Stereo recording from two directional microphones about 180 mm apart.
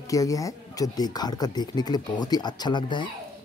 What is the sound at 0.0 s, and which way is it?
Speech, 20° left (ahead or behind).